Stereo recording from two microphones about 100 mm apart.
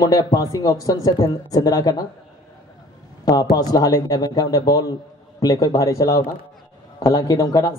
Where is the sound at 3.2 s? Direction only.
40° left (ahead or behind).